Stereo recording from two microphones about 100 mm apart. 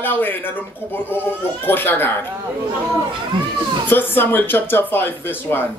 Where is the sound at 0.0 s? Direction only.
20° left (ahead or behind).